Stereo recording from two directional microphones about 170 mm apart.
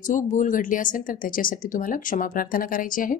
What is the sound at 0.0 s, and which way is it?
Speech, 50° left (ahead or behind).